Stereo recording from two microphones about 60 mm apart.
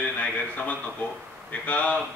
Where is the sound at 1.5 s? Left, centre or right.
Left.